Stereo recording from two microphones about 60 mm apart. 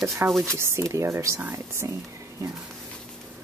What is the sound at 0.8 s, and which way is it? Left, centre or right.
Speech, right.